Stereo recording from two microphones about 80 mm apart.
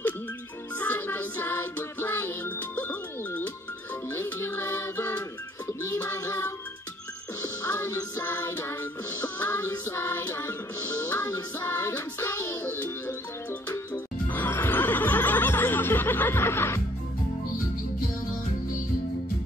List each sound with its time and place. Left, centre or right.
0.7 s music: left
7.6 s music: left